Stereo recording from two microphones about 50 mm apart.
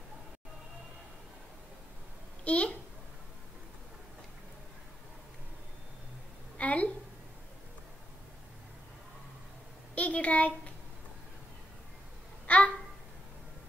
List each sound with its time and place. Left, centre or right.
2.4 s a child's voice: left
6.6 s a sound: left
9.9 s a child's voice: left
12.4 s babbling: left